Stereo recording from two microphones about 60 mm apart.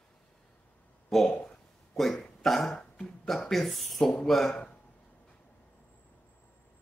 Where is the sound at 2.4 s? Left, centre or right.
Centre.